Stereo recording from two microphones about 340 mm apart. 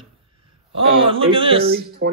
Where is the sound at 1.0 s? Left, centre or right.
Centre.